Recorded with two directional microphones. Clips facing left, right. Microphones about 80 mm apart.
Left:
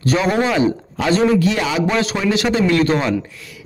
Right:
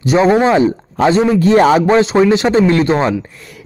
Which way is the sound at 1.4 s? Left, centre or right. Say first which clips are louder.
Right 9 dB; right.